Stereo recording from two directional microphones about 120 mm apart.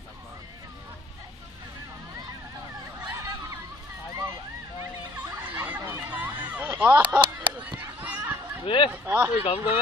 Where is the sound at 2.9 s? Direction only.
25° right (ahead or behind).